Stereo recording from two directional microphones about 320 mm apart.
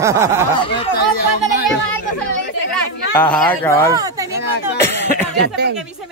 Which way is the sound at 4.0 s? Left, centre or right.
Centre.